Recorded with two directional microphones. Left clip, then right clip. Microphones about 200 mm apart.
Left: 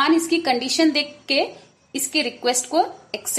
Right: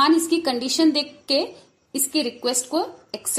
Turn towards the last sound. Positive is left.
turn(degrees=-15)  # may be behind; listen again after turning